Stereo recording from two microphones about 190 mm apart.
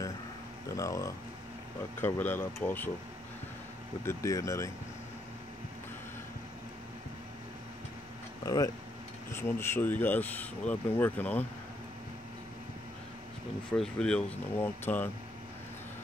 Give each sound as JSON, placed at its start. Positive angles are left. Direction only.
{"t": 0.7, "sound": "speech", "side_deg": 15}
{"t": 4.0, "sound": "speech", "side_deg": 15}
{"t": 8.5, "sound": "speech", "side_deg": 20}
{"t": 13.7, "sound": "speech", "side_deg": 5}